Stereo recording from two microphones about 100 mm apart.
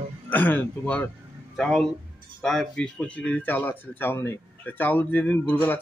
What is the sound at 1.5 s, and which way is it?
Speech, 5° left (ahead or behind).